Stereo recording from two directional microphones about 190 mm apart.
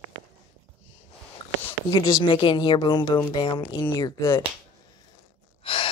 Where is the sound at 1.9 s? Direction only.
25° left (ahead or behind).